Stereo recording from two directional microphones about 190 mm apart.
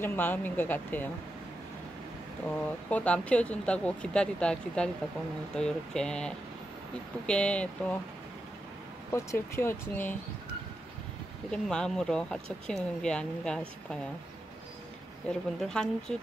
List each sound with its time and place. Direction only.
0.0 s speech: 10° left (ahead or behind)
2.4 s speech: 10° left (ahead or behind)
9.1 s speech: 15° left (ahead or behind)
11.5 s speech: 5° left (ahead or behind)
15.2 s speech: 5° left (ahead or behind)